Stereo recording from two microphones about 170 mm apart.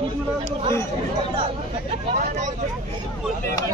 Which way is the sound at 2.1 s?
45° right (ahead or behind).